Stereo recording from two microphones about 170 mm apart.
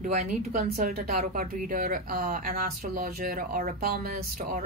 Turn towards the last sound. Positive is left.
turn(degrees=-55)  # may be behind; listen again after turning